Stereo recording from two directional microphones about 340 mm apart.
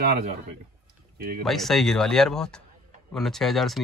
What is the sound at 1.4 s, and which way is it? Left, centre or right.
Speech, centre.